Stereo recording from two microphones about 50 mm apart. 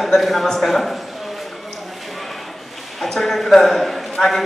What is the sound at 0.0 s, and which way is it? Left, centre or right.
Speech, centre.